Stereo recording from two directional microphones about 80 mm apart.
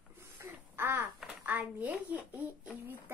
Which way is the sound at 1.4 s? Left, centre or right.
Centre.